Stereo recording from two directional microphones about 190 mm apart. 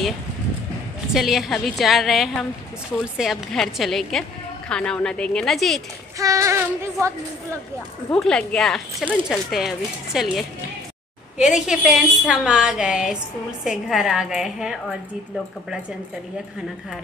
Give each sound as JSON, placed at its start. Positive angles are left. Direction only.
{"t": 1.1, "sound": "a woman's voice", "side_deg": 0}
{"t": 6.1, "sound": "child singing", "side_deg": -15}
{"t": 8.1, "sound": "a woman's voice", "side_deg": 5}
{"t": 11.3, "sound": "a woman's voice", "side_deg": -5}